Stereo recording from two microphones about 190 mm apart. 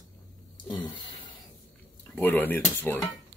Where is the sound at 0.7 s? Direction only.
25° left (ahead or behind).